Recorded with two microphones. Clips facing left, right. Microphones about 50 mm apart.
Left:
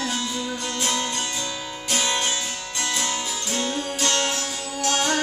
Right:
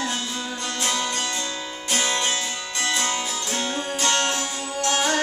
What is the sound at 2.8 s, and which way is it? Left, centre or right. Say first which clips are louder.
Music: right 2 dB; centre.